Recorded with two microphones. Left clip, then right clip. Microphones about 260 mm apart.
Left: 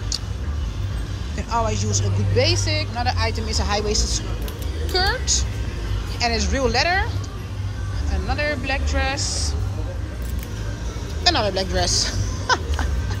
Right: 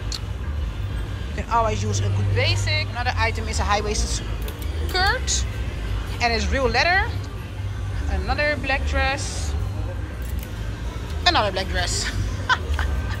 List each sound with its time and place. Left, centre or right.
1.3 s a woman's voice: centre
8.1 s a woman's voice: centre
11.2 s speech: centre